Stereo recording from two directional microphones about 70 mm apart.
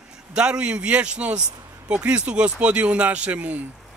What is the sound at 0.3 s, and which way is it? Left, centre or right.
A man's voice, centre.